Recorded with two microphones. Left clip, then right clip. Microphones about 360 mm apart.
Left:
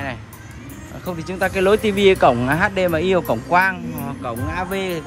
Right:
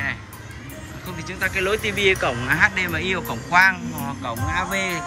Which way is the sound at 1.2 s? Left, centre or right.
Centre.